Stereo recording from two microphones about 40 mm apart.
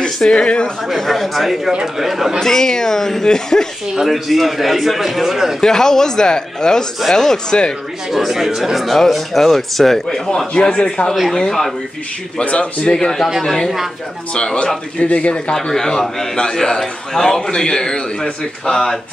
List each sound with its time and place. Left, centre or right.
0.0 s a sound: left
0.9 s a man's voice: centre
2.4 s a man's voice: centre
4.1 s a man's voice: centre
5.6 s a man's voice: centre
8.1 s a man's voice: centre
10.5 s speech: left
11.3 s a man's voice: centre
12.4 s speech: left
12.9 s a man's voice: centre
14.3 s speech: left
15.7 s a man's voice: centre